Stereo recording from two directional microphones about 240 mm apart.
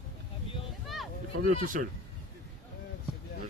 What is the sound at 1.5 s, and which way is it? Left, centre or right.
Speech, right.